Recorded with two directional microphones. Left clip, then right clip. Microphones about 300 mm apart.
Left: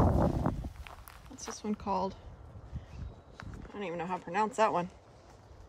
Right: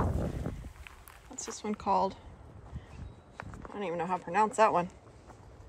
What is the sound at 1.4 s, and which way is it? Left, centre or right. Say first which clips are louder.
Speech: right 3 dB; centre.